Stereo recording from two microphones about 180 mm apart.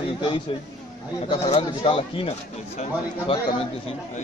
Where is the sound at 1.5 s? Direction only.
30° left (ahead or behind).